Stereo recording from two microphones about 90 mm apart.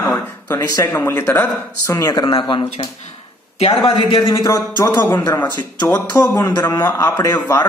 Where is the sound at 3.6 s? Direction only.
75° left (ahead or behind); by 4.6 s 55° left (ahead or behind).